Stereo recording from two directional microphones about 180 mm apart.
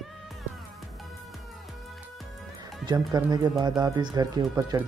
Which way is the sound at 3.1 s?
20° right (ahead or behind).